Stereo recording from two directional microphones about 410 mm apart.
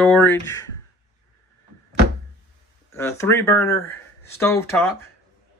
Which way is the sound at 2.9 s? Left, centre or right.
Centre.